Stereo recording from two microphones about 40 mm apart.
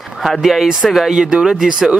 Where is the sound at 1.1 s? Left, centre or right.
Centre.